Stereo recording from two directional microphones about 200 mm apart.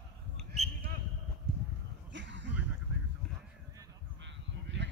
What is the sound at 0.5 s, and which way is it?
Basketball bounce, 35° right (ahead or behind).